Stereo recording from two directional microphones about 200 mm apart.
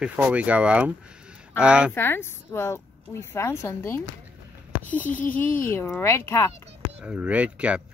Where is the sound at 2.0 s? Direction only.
10° left (ahead or behind).